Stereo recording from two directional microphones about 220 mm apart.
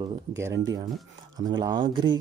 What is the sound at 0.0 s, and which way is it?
Speech, 15° right (ahead or behind).